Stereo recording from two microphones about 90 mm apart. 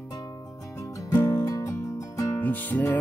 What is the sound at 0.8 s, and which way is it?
Music, 40° left (ahead or behind).